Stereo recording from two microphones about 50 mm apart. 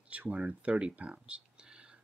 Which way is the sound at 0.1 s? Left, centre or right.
Right.